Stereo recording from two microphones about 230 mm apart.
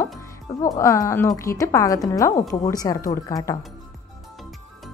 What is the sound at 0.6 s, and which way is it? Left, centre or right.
A woman's voice, centre.